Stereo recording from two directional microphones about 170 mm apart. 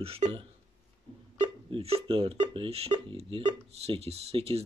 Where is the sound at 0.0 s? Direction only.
35° right (ahead or behind).